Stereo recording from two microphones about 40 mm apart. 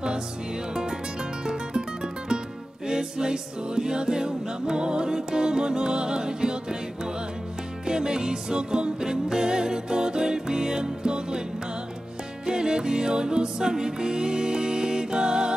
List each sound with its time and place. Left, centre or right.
1.4 s music: centre
7.8 s music: centre
12.4 s music: centre